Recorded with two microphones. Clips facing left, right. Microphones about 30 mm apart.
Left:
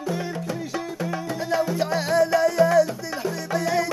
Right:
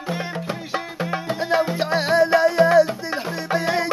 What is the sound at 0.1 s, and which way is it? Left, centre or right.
Music, right.